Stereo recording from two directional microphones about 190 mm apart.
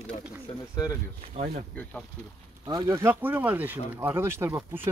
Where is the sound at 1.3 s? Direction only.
35° right (ahead or behind).